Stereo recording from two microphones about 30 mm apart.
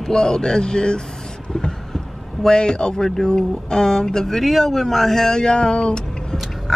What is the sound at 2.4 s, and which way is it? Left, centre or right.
Speech, left.